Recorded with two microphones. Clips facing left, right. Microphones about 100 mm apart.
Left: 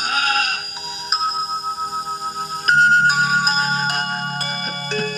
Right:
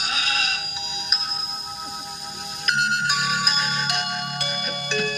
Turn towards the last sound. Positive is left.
turn(degrees=40)  # may be behind; listen again after turning